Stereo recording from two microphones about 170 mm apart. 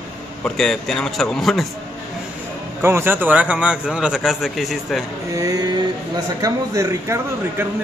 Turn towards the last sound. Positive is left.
turn(degrees=-20)  # may be behind; listen again after turning